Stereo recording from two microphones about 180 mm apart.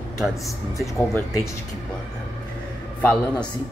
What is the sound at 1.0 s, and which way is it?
Speech, 15° left (ahead or behind).